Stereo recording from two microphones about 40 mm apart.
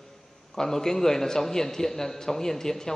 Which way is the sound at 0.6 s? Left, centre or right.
Centre.